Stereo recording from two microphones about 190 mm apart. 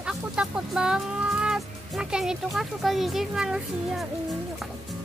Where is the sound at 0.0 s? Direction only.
5° right (ahead or behind).